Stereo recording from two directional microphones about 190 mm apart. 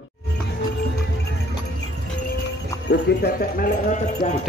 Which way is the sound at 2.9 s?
60° left (ahead or behind).